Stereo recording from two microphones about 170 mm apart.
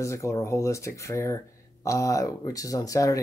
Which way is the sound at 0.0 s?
15° left (ahead or behind).